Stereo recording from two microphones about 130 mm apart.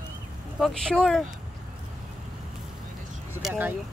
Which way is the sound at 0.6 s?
Centre (ahead or behind).